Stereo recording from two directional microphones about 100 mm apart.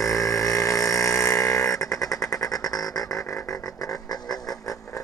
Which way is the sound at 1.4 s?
35° left (ahead or behind).